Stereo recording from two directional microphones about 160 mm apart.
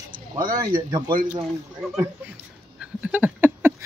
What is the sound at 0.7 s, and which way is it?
Speech, 30° right (ahead or behind).